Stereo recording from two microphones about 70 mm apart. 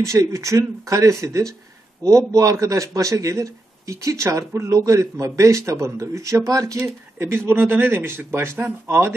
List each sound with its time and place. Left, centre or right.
0.0 s a man's voice: right
7.2 s speech: right